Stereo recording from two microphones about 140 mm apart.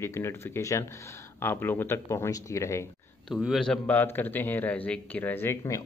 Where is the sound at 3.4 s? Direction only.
Centre (ahead or behind).